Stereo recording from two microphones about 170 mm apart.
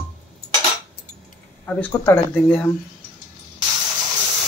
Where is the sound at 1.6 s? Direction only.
10° left (ahead or behind).